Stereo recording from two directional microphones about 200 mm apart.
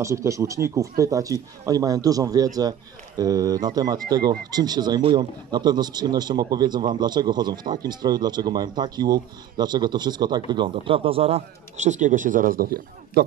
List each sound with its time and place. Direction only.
0.0 s speech: 15° right (ahead or behind); by 13.2 s 50° right (ahead or behind)